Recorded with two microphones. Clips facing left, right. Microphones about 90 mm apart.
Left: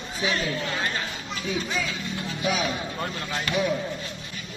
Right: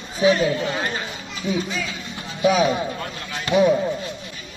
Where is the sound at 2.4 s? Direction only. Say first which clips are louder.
Right 10 dB; 25° right (ahead or behind).